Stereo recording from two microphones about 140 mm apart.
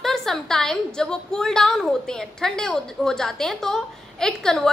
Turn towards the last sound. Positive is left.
turn(degrees=5)  # may be behind; listen again after turning